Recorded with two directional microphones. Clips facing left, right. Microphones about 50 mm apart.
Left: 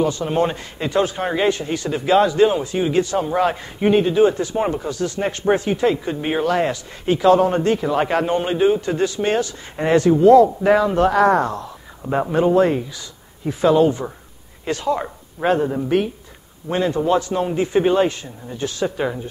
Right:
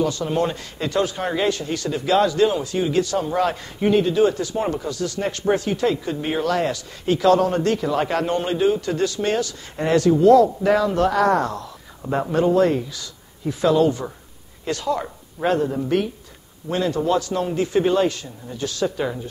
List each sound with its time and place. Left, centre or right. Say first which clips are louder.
0.0 s a man's voice: left 2 dB; left